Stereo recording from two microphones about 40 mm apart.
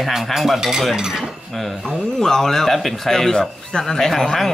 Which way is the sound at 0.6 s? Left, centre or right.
Centre.